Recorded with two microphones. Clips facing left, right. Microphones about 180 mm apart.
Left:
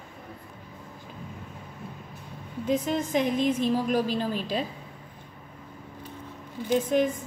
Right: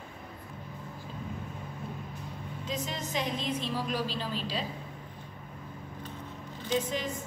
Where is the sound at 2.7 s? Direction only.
55° left (ahead or behind).